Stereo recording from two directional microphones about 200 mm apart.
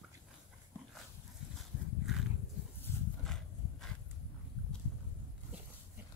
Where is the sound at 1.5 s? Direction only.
Centre (ahead or behind).